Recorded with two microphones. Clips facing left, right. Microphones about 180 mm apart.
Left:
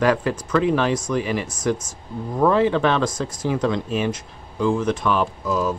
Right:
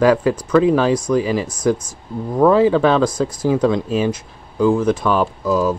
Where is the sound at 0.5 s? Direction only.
30° right (ahead or behind).